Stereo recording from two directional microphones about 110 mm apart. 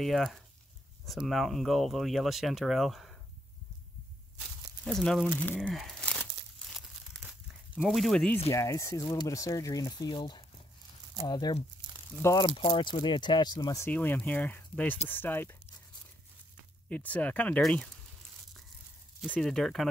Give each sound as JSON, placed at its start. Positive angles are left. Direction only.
{"t": 0.0, "sound": "speech", "side_deg": 0}
{"t": 4.8, "sound": "speech", "side_deg": 5}
{"t": 5.3, "sound": "speech", "side_deg": 15}
{"t": 5.6, "sound": "crumpling", "side_deg": 0}
{"t": 7.7, "sound": "speech", "side_deg": -5}
{"t": 8.5, "sound": "speech", "side_deg": 30}
{"t": 12.5, "sound": "speech", "side_deg": 50}
{"t": 13.7, "sound": "speech", "side_deg": 20}
{"t": 16.9, "sound": "speech", "side_deg": 15}
{"t": 19.2, "sound": "speech", "side_deg": 10}